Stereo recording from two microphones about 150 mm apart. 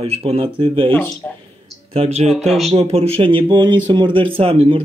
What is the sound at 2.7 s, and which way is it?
Speech, 45° right (ahead or behind).